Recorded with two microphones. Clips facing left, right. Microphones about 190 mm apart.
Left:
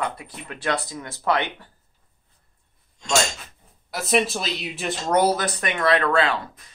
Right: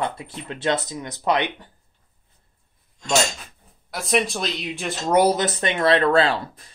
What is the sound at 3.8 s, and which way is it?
Speech, centre (ahead or behind).